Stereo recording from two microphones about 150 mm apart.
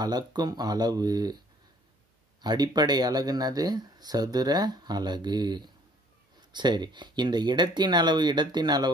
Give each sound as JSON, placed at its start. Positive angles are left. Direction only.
{"t": 0.0, "sound": "speech", "side_deg": -30}
{"t": 2.4, "sound": "speech", "side_deg": -25}